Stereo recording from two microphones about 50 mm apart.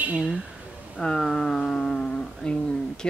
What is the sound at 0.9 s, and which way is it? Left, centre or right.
Speech, centre.